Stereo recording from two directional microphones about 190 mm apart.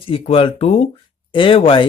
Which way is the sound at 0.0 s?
30° left (ahead or behind).